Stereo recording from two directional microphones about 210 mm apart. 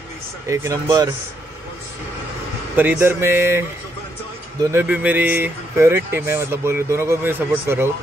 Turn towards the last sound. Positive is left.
turn(degrees=-10)  # may be behind; listen again after turning